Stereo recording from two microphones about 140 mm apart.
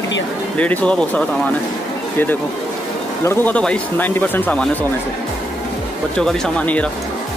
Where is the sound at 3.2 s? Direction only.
15° left (ahead or behind).